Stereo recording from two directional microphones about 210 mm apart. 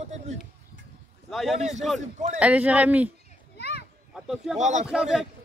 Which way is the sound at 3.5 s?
50° left (ahead or behind).